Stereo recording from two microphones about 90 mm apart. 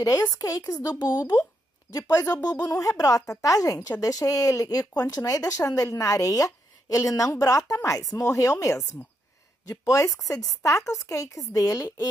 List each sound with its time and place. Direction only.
0.0 s a woman's voice: 40° left (ahead or behind)
0.8 s a woman's voice: 50° left (ahead or behind)